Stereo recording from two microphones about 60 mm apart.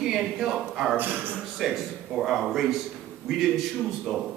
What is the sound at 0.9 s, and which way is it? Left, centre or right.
Speech, right.